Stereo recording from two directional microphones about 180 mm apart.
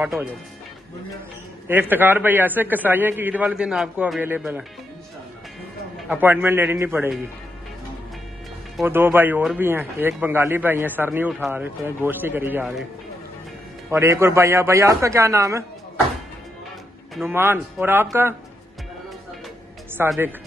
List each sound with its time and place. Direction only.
1.7 s a man's voice: 10° right (ahead or behind)
6.0 s a man's voice: 10° right (ahead or behind)
8.8 s a man's voice: 10° right (ahead or behind)
13.8 s a man's voice: 15° right (ahead or behind)
17.3 s a man's voice: 10° right (ahead or behind)
20.0 s a man's voice: 10° right (ahead or behind)